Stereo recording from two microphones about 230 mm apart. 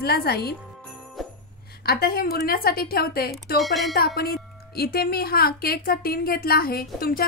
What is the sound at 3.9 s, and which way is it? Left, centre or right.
Speech, left.